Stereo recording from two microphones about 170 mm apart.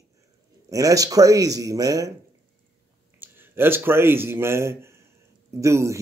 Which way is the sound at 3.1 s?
10° right (ahead or behind).